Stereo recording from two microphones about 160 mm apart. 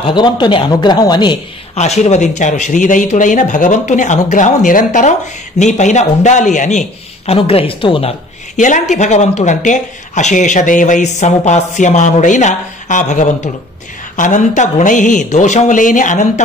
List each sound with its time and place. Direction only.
0.0 s speech: 30° left (ahead or behind)
1.8 s speech: 45° left (ahead or behind)
7.3 s speech: 35° left (ahead or behind)
8.5 s speech: 50° left (ahead or behind)